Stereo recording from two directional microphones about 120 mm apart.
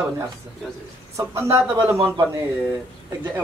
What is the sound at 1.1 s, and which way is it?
Speech, 25° right (ahead or behind).